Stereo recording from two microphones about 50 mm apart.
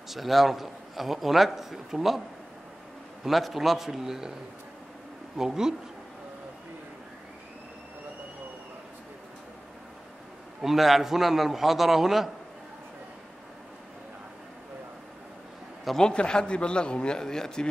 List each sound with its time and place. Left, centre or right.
0.1 s a man's voice: centre
3.3 s a man's voice: centre
5.4 s a man's voice: centre
10.6 s a man's voice: centre
16.0 s a man's voice: centre